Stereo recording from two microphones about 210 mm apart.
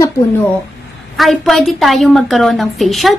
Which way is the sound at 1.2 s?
Centre (ahead or behind).